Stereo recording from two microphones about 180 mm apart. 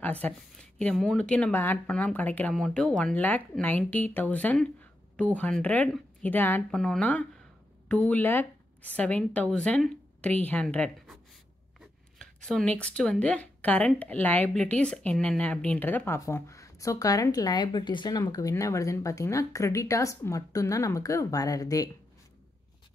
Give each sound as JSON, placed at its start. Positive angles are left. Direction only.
{"t": 0.0, "sound": "a woman's voice", "side_deg": 10}
{"t": 12.2, "sound": "speech", "side_deg": 0}